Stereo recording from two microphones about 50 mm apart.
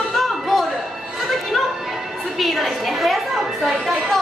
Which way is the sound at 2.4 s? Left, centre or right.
Centre.